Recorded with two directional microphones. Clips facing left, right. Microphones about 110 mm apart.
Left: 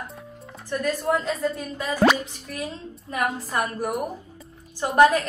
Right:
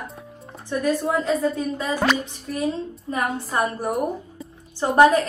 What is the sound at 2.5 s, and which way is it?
A woman's voice, 35° right (ahead or behind).